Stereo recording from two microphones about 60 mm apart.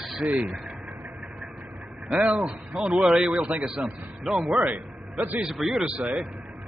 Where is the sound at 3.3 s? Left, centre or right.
Right.